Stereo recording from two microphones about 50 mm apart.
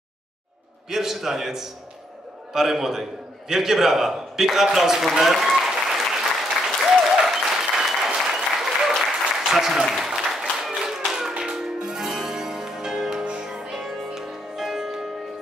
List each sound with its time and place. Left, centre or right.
0.8 s a man's voice: centre
6.9 s applause: centre
13.2 s music: centre